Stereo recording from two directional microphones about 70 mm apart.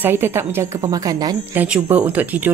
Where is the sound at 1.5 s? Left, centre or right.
Right.